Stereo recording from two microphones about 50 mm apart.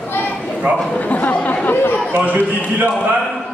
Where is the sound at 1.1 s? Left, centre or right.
Left.